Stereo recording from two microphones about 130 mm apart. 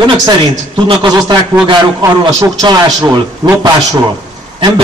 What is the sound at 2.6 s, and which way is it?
Speech, 35° right (ahead or behind).